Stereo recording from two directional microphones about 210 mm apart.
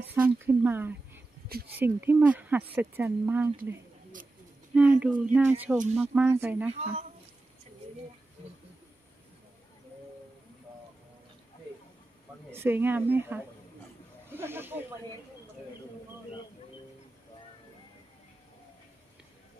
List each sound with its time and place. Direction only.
0.5 s speech: 10° right (ahead or behind)
4.7 s speech: 5° right (ahead or behind)
6.7 s a woman's voice: 30° right (ahead or behind)
12.5 s speech: 10° right (ahead or behind)